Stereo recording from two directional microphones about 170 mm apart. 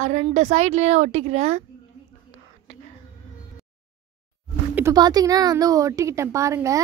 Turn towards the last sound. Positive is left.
turn(degrees=-15)  # may be behind; listen again after turning